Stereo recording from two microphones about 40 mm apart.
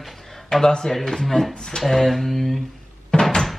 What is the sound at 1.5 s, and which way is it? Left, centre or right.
Speech, centre.